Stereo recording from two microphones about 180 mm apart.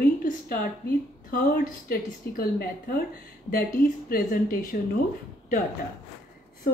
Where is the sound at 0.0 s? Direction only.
55° left (ahead or behind).